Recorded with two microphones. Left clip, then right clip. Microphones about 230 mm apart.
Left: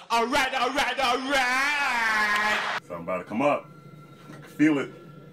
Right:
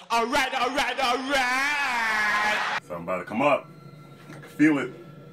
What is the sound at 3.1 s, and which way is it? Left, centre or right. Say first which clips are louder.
Speech: right 1 dB; centre.